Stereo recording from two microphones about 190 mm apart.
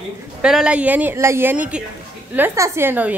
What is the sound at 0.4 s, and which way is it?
A woman's voice, 5° right (ahead or behind).